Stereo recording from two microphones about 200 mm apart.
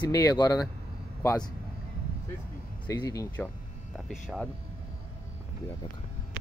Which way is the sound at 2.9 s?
20° left (ahead or behind).